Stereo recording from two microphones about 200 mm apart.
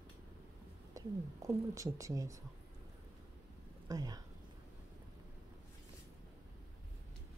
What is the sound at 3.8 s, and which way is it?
Speech, 20° right (ahead or behind).